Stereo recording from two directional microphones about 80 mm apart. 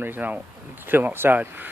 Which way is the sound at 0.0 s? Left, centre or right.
Right.